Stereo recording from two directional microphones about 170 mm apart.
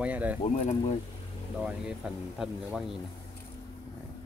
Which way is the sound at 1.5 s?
5° right (ahead or behind).